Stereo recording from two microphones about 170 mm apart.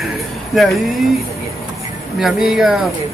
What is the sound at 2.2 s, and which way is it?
Speech, centre (ahead or behind).